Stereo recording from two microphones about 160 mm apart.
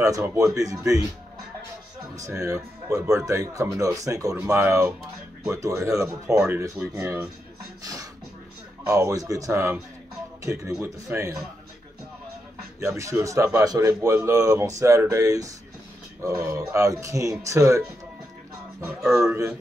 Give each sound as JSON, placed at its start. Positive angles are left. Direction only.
{"t": 0.0, "sound": "speech", "side_deg": -20}
{"t": 2.1, "sound": "speech", "side_deg": -20}
{"t": 6.3, "sound": "speech", "side_deg": -5}
{"t": 7.8, "sound": "a sound", "side_deg": -20}
{"t": 8.8, "sound": "speech", "side_deg": -20}
{"t": 12.8, "sound": "speech", "side_deg": -20}
{"t": 18.9, "sound": "speech", "side_deg": 0}